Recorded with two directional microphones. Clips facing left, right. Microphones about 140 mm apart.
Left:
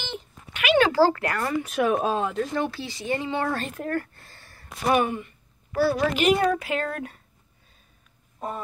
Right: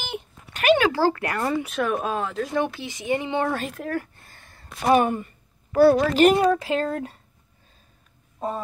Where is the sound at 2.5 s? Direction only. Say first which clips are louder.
Right 2 dB; 20° right (ahead or behind).